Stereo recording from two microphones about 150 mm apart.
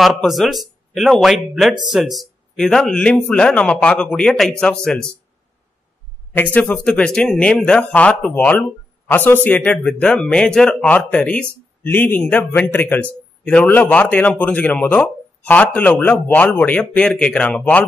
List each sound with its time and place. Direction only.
0.0 s speech: centre (ahead or behind)
6.3 s speech: 10° left (ahead or behind)